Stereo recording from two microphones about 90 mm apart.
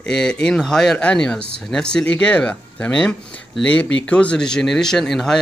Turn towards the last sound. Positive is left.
turn(degrees=5)  # may be behind; listen again after turning